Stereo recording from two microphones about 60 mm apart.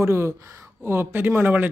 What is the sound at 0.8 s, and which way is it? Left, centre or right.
Speech, right.